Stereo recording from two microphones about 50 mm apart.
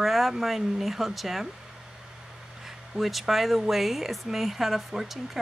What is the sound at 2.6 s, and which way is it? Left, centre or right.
Speech, centre.